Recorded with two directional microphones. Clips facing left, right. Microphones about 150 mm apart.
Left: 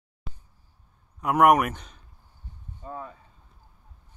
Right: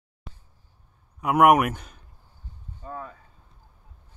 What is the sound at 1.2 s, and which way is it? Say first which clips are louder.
Speech: right 1 dB; 5° right (ahead or behind).